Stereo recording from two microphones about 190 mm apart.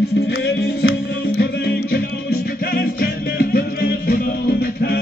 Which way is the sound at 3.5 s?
50° left (ahead or behind).